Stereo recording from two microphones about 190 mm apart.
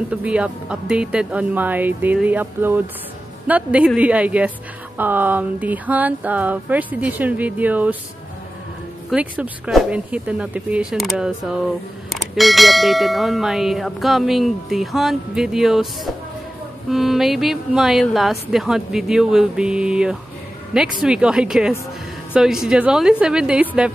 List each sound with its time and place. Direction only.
0.1 s speech: 5° right (ahead or behind)
9.1 s speech: 5° right (ahead or behind)
16.9 s speech: centre (ahead or behind)